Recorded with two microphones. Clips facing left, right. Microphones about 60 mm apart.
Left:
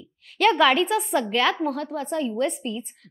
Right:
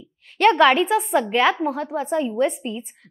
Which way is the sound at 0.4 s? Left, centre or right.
Centre.